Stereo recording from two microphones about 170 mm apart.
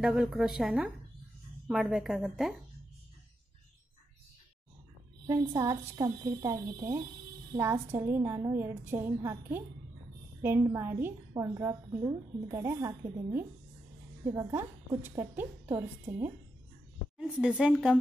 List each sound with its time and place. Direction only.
0.0 s a woman's voice: 5° right (ahead or behind)
5.6 s a woman's voice: 20° right (ahead or behind); by 17.9 s 5° right (ahead or behind)